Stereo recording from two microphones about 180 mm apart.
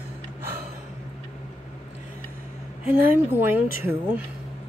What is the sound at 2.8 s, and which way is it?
Speech, 10° right (ahead or behind).